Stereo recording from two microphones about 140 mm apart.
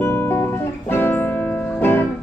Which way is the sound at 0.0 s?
15° left (ahead or behind).